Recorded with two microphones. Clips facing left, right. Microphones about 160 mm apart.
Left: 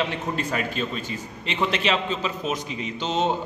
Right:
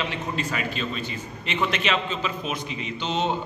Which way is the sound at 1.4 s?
30° left (ahead or behind).